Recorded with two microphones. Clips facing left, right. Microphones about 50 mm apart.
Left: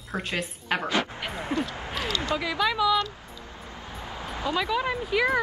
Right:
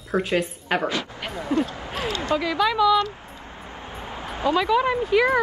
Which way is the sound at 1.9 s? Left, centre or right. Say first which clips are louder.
Right 2 dB; right.